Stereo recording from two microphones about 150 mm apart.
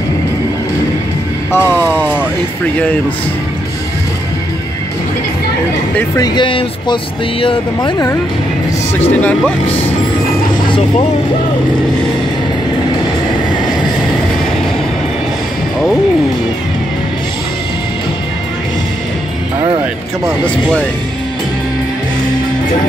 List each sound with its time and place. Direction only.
1.5 s vehicle: 15° left (ahead or behind)
6.1 s speech: 30° left (ahead or behind)
9.1 s speech: 10° left (ahead or behind)
10.7 s speech: 35° left (ahead or behind)